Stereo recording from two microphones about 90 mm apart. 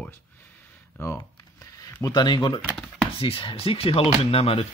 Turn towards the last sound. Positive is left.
turn(degrees=90)